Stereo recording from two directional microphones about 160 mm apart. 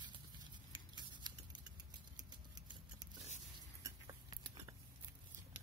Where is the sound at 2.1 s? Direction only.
25° right (ahead or behind).